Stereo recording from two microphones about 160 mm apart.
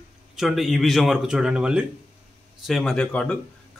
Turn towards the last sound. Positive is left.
turn(degrees=5)  # may be behind; listen again after turning